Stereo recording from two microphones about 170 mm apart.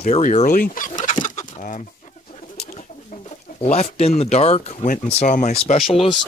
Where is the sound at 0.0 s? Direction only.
45° left (ahead or behind).